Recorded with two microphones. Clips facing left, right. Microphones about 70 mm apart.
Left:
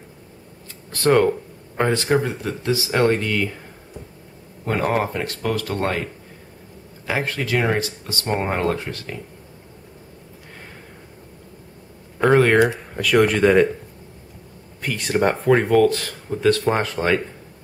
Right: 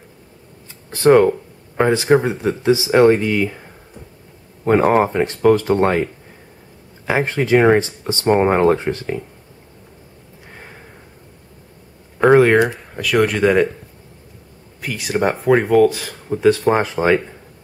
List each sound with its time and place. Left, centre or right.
0.9 s speech: centre
4.6 s speech: right
7.1 s speech: right
12.3 s speech: centre
14.8 s speech: centre